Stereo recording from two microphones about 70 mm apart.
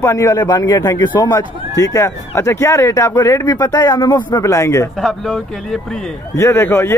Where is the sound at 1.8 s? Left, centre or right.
Left.